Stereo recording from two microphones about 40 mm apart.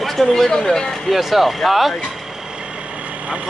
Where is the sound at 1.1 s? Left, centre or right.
Centre.